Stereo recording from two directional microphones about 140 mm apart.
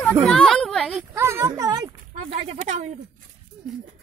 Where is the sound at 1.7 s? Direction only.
30° right (ahead or behind).